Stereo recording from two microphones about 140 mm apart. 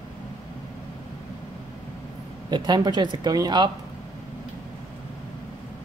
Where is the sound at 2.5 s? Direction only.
30° right (ahead or behind).